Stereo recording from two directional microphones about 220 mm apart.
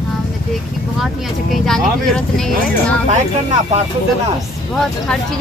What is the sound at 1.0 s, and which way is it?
Speech, centre (ahead or behind).